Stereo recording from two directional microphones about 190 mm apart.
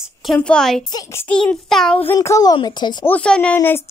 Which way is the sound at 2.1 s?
15° left (ahead or behind).